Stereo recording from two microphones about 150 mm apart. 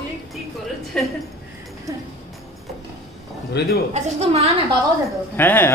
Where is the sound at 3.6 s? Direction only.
90° left.